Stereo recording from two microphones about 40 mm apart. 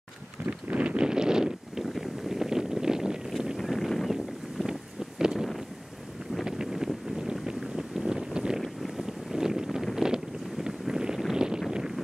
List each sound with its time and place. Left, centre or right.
0.7 s wind noise: right
1.0 s wind noise: centre
3.5 s boat: centre
5.2 s a sound: centre
6.4 s wind: centre
8.5 s boat: centre
9.4 s wind noise: centre
9.9 s boat: centre
11.3 s a sound: centre